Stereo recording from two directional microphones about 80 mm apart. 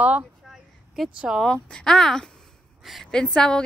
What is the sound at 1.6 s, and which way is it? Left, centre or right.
A woman's voice, centre.